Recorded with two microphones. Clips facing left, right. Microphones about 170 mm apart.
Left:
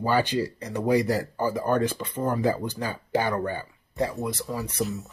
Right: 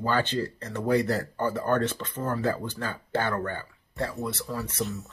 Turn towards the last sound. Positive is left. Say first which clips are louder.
# left 2 dB
turn(degrees=15)  # may be behind; listen again after turning